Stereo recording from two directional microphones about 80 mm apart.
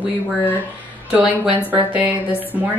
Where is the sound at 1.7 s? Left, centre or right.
Centre.